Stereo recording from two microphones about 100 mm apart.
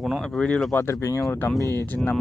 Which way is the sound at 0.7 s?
20° left (ahead or behind).